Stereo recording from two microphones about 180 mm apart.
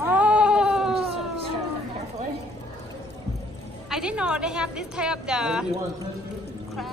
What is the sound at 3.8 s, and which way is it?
A woman's voice, 5° right (ahead or behind).